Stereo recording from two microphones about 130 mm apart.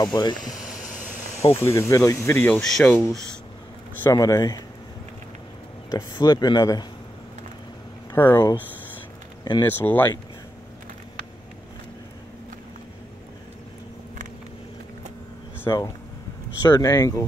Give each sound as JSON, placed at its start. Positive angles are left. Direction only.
{"t": 0.0, "sound": "speech", "side_deg": 35}
{"t": 1.4, "sound": "speech", "side_deg": 20}
{"t": 2.6, "sound": "speech", "side_deg": 5}
{"t": 2.9, "sound": "speech", "side_deg": 15}
{"t": 4.0, "sound": "speech", "side_deg": 25}
{"t": 5.9, "sound": "speech", "side_deg": 35}
{"t": 8.2, "sound": "speech", "side_deg": 15}
{"t": 8.5, "sound": "a sound", "side_deg": 15}
{"t": 9.4, "sound": "speech", "side_deg": 35}
{"t": 9.7, "sound": "speech", "side_deg": 15}
{"t": 15.7, "sound": "speech", "side_deg": 30}